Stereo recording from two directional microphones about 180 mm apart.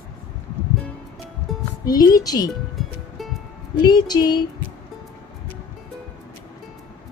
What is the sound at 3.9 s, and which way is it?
Speech, 20° left (ahead or behind).